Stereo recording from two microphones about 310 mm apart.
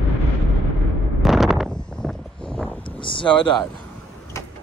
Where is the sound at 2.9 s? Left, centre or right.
Centre.